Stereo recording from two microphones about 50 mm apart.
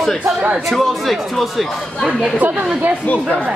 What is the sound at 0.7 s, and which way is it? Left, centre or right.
Speech, centre.